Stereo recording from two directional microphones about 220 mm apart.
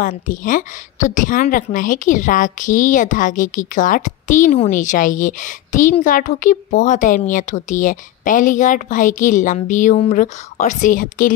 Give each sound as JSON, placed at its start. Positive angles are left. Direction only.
{"t": 0.0, "sound": "a woman's voice", "side_deg": 35}